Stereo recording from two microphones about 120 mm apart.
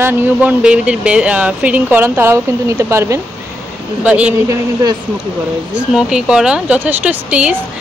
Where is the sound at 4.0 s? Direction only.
10° right (ahead or behind).